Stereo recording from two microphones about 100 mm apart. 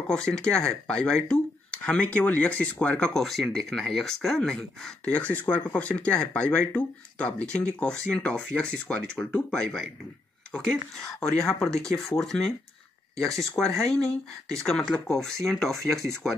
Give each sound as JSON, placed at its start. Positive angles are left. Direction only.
{"t": 0.1, "sound": "speech", "side_deg": 10}